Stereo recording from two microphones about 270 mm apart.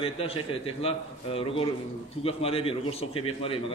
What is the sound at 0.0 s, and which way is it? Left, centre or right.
Speech, centre.